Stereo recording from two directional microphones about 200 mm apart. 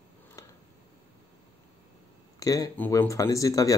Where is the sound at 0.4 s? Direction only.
15° left (ahead or behind).